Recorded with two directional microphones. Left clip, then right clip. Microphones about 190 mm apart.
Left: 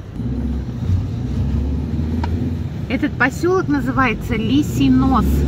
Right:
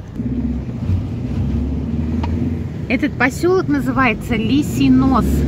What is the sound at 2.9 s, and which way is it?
Speech, 15° right (ahead or behind).